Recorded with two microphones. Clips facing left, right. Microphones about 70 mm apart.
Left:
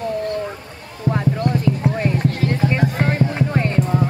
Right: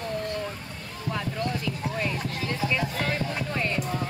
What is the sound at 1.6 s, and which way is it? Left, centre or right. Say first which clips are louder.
Music: left 10 dB; left.